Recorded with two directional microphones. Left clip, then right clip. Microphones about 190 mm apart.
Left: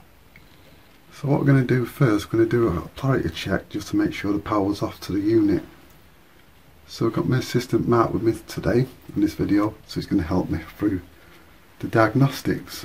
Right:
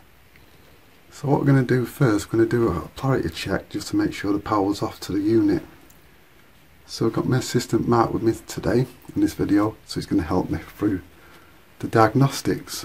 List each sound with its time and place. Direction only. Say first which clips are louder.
1.2 s speech: right 1 dB; 10° right (ahead or behind)
6.9 s speech: right 1 dB; 15° right (ahead or behind)